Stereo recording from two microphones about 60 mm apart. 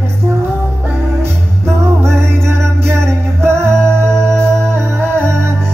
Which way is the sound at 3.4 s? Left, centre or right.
Right.